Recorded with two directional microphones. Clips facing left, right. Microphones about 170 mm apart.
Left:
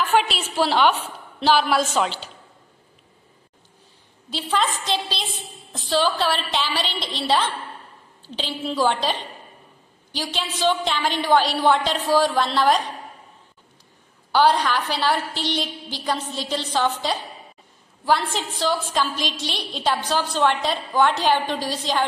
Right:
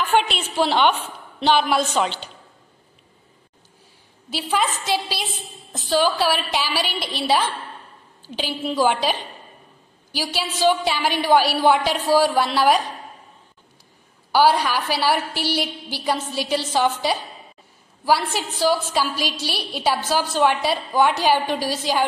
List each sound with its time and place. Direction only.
0.2 s a woman's voice: centre (ahead or behind)
4.3 s a woman's voice: 5° right (ahead or behind)
5.8 s a woman's voice: centre (ahead or behind)
10.1 s a woman's voice: 5° right (ahead or behind)
14.3 s a woman's voice: 10° right (ahead or behind)